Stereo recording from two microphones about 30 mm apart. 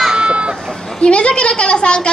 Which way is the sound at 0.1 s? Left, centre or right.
Right.